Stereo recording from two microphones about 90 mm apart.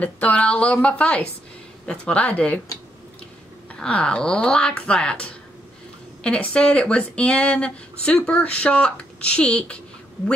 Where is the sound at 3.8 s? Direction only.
10° left (ahead or behind).